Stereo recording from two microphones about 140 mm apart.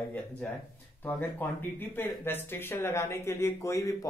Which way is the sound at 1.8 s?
15° left (ahead or behind).